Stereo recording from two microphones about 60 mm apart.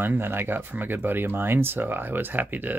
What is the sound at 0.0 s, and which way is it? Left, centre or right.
Speech, right.